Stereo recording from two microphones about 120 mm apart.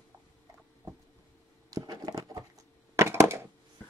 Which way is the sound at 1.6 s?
35° right (ahead or behind).